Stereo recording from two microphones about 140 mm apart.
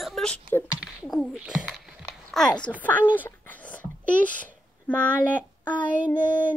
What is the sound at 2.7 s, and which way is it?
Speech, 20° left (ahead or behind).